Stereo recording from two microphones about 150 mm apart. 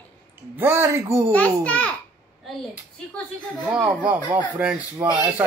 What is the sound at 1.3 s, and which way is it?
Speech, 10° left (ahead or behind).